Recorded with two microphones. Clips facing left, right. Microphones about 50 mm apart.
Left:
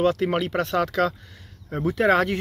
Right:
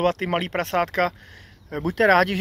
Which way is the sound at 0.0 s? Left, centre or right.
Right.